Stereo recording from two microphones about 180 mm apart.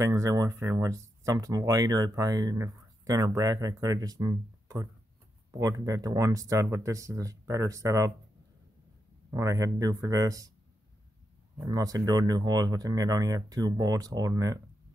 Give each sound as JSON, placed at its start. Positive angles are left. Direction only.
{"t": 0.0, "sound": "speech", "side_deg": -15}
{"t": 9.3, "sound": "speech", "side_deg": -15}
{"t": 11.6, "sound": "speech", "side_deg": -20}